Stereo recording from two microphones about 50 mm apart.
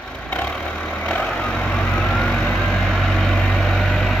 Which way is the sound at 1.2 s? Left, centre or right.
Centre.